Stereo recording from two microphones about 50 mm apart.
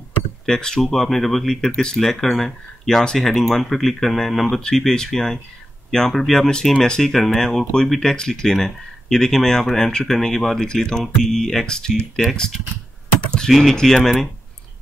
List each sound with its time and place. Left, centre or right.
0.5 s speech: centre
13.2 s typing: centre
13.5 s speech: centre